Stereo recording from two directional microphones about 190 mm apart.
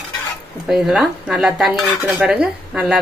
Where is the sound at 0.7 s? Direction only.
Centre (ahead or behind).